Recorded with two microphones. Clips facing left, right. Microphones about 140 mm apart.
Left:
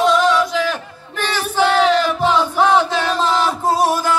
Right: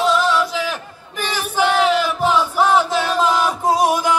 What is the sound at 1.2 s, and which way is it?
Battle cry, 10° right (ahead or behind).